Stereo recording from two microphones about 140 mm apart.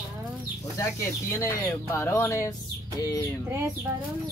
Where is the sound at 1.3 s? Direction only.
20° left (ahead or behind).